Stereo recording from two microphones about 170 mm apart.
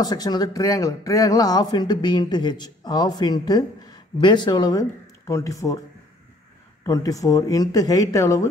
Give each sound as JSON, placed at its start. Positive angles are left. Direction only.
{"t": 0.0, "sound": "speech", "side_deg": 25}
{"t": 6.8, "sound": "speech", "side_deg": 20}